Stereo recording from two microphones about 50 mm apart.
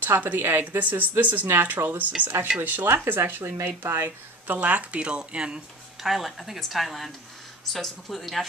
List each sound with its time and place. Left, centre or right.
0.0 s speech: right
0.7 s speech: right
1.5 s speech: right
3.2 s speech: right
4.6 s speech: right
6.0 s speech: centre